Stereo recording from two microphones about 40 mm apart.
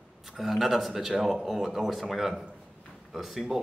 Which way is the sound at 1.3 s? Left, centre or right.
Centre.